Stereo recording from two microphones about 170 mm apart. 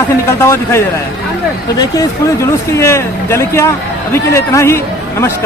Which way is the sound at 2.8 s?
15° left (ahead or behind).